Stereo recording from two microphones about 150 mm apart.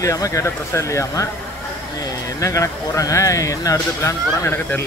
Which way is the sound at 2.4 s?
20° left (ahead or behind).